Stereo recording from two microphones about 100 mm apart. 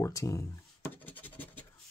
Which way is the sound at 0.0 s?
30° left (ahead or behind).